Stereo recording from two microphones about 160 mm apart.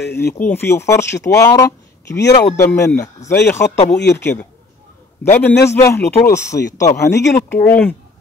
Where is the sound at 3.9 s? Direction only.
90° left.